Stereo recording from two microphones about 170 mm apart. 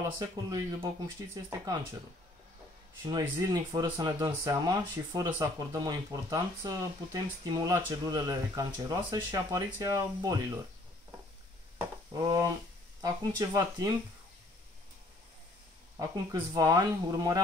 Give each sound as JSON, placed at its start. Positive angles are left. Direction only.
{"t": 0.2, "sound": "speech", "side_deg": -20}
{"t": 3.1, "sound": "speech", "side_deg": -20}
{"t": 12.1, "sound": "speech", "side_deg": -20}
{"t": 16.0, "sound": "speech", "side_deg": -20}